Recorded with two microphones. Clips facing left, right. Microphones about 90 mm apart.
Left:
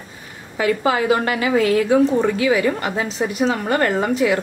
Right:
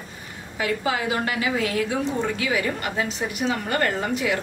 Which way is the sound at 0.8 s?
60° left (ahead or behind).